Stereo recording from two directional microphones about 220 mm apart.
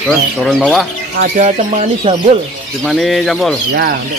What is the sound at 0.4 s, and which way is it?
Speech, centre (ahead or behind).